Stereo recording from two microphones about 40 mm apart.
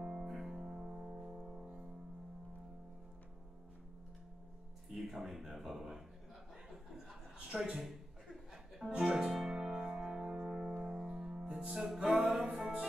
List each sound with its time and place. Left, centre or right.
0.1 s music: centre
4.9 s speech: centre
7.3 s a sound: right
7.8 s chuckle: centre
9.0 s music: centre
12.1 s music: centre